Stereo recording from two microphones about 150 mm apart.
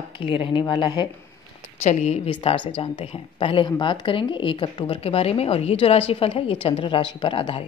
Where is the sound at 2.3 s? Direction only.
35° left (ahead or behind).